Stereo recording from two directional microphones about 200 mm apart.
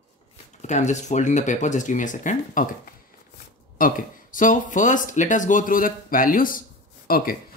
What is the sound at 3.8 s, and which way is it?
Speech, 40° left (ahead or behind).